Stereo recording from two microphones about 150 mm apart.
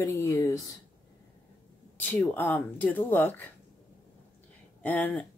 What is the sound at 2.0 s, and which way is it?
Speech, 15° left (ahead or behind).